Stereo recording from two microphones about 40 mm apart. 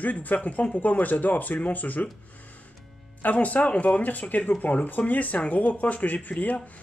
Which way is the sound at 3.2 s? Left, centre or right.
Left.